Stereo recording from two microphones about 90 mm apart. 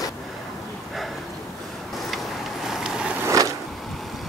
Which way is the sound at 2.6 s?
5° right (ahead or behind).